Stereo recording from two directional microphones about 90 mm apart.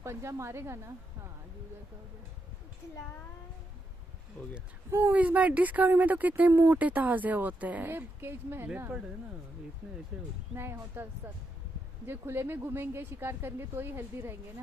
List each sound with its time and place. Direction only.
0.0 s a woman's voice: 30° right (ahead or behind)
4.9 s speech: 20° right (ahead or behind)
9.8 s speech: 10° right (ahead or behind)
10.5 s speech: 30° right (ahead or behind)